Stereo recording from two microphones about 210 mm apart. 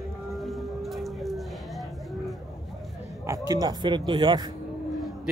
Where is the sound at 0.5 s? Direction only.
Centre (ahead or behind).